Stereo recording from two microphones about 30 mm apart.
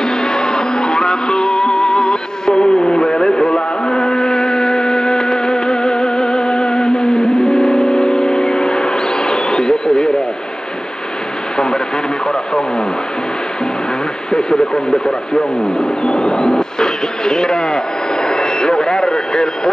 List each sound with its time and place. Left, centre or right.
0.0 s music: left
11.5 s radio: left
14.3 s speech: left
16.0 s radio: left